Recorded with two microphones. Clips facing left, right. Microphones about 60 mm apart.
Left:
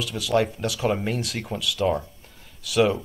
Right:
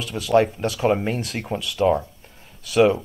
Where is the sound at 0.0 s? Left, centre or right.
Right.